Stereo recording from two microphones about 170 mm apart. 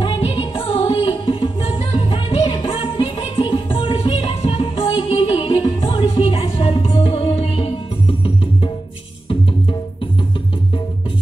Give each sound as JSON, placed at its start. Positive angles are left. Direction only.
{"t": 0.0, "sound": "music", "side_deg": 30}